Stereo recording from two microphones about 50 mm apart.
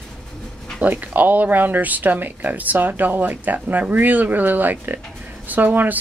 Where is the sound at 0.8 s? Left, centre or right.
Right.